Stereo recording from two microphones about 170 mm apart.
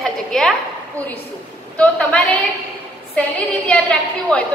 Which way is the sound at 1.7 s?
5° left (ahead or behind).